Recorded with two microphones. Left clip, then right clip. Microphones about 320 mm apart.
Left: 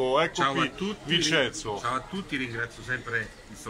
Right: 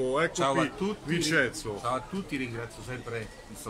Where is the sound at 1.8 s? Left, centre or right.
Centre.